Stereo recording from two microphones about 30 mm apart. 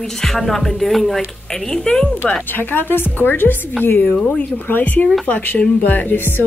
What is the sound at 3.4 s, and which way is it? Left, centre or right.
Speech, left.